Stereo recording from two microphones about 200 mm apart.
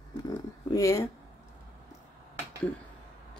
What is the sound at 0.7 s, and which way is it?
Speech, 15° left (ahead or behind).